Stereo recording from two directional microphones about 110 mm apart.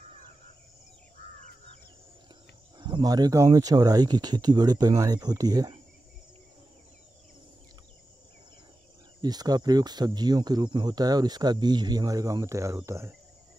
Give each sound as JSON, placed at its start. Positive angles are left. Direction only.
{"t": 2.8, "sound": "speech", "side_deg": -40}
{"t": 9.2, "sound": "speech", "side_deg": -35}